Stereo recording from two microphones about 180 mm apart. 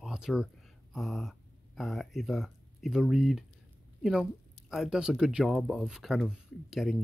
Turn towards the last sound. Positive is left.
turn(degrees=0)  # may be behind; listen again after turning